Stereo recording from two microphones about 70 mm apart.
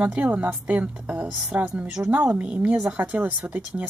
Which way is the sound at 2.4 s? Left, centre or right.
Centre.